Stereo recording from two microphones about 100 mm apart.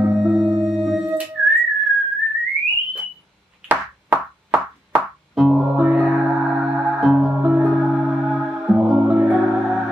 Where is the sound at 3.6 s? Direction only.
20° right (ahead or behind).